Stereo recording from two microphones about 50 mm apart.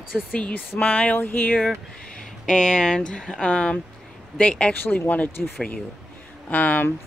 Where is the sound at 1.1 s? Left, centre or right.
Left.